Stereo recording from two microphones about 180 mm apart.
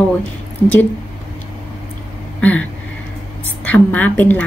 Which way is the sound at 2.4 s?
5° left (ahead or behind).